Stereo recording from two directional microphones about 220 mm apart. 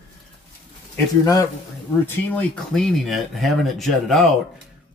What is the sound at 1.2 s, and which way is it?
A man's voice, 15° left (ahead or behind).